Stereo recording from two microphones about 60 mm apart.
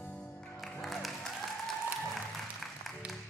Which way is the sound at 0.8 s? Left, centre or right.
Centre.